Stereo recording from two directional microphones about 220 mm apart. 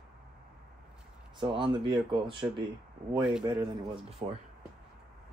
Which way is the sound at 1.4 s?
20° right (ahead or behind).